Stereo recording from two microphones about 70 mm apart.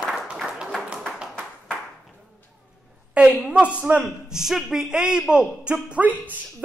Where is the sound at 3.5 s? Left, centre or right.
Centre.